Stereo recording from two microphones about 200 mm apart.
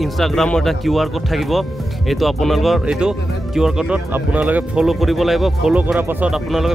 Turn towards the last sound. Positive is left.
turn(degrees=0)  # may be behind; listen again after turning